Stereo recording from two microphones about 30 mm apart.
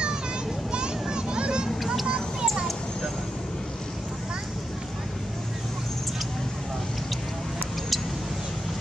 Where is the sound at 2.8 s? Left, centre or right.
Left.